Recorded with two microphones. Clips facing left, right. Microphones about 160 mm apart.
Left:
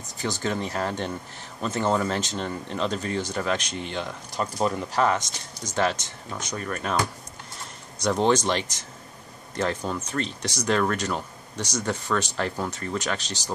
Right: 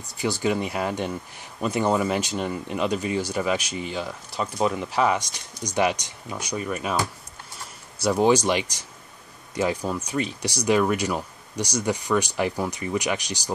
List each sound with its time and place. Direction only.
0.2 s speech: 10° right (ahead or behind)